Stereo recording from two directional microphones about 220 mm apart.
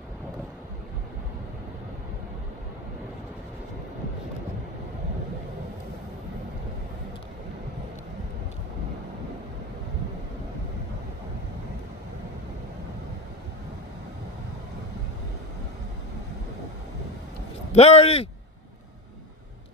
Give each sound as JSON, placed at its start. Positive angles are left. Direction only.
{"t": 17.7, "sound": "speech", "side_deg": 30}